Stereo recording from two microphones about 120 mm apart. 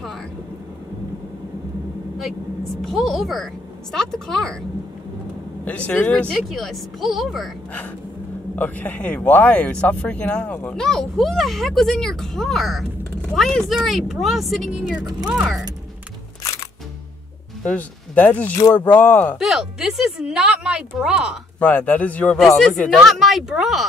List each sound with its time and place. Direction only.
2.8 s a woman's voice: centre (ahead or behind)
5.7 s a woman's voice: 10° left (ahead or behind)
8.5 s a woman's voice: 15° left (ahead or behind)
17.6 s speech: 10° left (ahead or behind)
18.6 s speech: 35° left (ahead or behind)
18.9 s speech: 15° left (ahead or behind)
19.3 s a woman's voice: 5° right (ahead or behind)
21.5 s a woman's voice: 15° left (ahead or behind)